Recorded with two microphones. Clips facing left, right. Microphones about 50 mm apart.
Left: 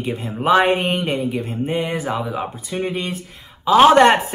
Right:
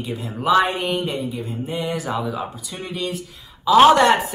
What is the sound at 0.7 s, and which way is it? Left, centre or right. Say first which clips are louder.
Mantra: left 4 dB; left.